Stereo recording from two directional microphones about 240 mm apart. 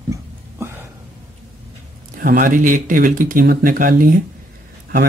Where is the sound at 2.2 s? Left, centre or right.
Right.